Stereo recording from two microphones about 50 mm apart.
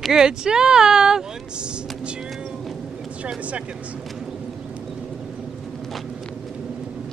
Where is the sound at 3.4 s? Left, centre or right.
Right.